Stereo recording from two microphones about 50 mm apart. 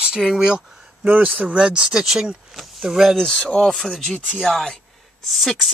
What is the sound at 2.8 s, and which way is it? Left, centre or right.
Speech, centre.